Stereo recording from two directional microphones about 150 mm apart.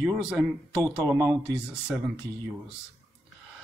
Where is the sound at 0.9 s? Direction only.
20° right (ahead or behind).